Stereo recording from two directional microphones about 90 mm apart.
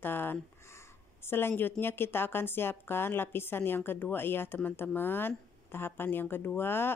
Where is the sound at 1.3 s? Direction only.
25° left (ahead or behind).